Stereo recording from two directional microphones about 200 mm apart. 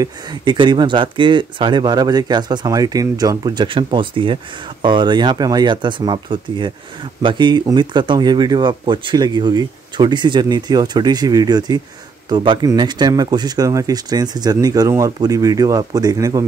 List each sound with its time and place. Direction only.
0.0 s speech: 20° right (ahead or behind)